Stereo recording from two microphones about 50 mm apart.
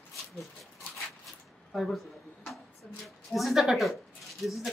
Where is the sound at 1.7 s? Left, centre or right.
Centre.